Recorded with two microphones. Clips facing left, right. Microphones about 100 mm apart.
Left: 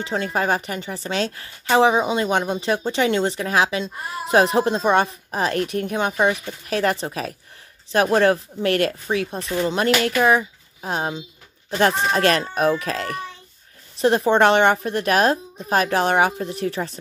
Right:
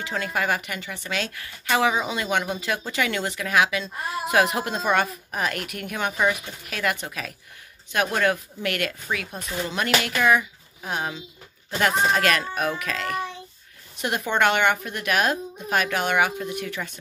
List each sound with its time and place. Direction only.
0.0 s a woman's voice: 30° left (ahead or behind)